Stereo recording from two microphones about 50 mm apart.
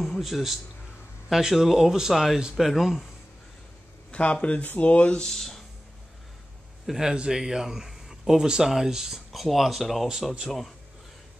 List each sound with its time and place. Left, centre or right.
0.2 s speech: centre
4.1 s speech: left
5.2 s speech: centre
6.9 s speech: centre